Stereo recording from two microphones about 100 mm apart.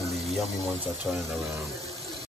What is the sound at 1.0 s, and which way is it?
Speech, centre (ahead or behind).